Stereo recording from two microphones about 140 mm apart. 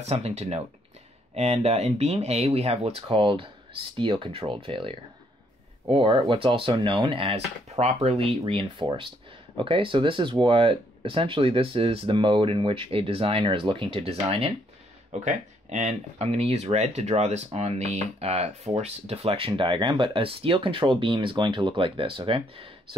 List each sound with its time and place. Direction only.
0.0 s speech: 50° right (ahead or behind)
15.0 s speech: 55° right (ahead or behind); by 22.9 s 40° right (ahead or behind)